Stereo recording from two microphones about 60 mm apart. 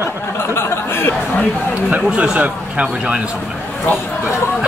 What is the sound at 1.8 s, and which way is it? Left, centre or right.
Speech, right.